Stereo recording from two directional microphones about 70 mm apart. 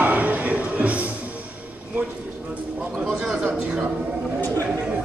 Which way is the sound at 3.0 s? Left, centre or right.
Centre.